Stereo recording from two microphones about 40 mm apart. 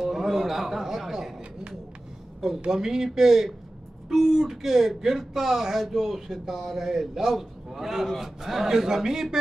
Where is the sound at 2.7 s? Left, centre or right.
Centre.